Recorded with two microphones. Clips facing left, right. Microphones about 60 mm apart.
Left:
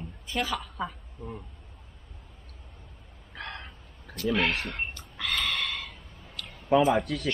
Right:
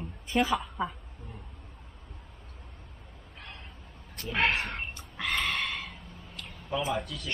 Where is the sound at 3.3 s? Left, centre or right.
Left.